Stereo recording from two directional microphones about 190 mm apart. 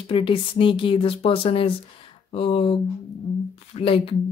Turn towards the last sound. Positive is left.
turn(degrees=30)  # may be behind; listen again after turning